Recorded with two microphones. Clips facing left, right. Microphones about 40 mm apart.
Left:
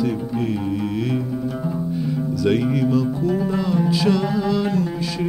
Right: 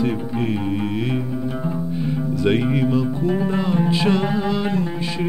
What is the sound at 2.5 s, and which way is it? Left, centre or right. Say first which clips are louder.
Music: even; right.